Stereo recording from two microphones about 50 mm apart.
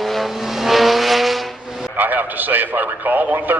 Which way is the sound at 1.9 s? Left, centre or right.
Right.